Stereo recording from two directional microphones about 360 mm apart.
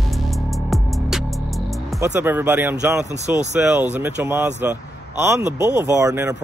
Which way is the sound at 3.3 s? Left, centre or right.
Centre.